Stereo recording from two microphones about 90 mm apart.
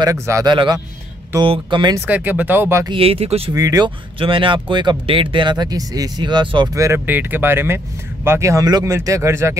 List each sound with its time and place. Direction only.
0.0 s speech: 40° right (ahead or behind)
0.5 s speech: 60° right (ahead or behind)
2.0 s speech: 15° right (ahead or behind)
2.9 s speech: 90° right
3.5 s speech: 40° right (ahead or behind)
3.8 s speech: 70° right (ahead or behind); by 6.2 s 45° right (ahead or behind)
6.2 s speech: 60° right (ahead or behind)
6.7 s speech: 35° right (ahead or behind)
7.1 s speech: 20° right (ahead or behind)